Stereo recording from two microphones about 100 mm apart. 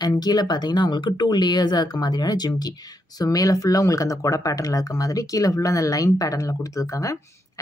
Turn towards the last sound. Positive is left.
turn(degrees=35)  # may be behind; listen again after turning